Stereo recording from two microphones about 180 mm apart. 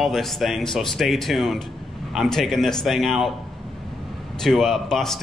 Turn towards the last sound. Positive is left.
turn(degrees=0)  # may be behind; listen again after turning